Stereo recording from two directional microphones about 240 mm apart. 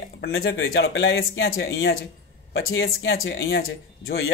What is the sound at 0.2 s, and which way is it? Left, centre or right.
Speech, left.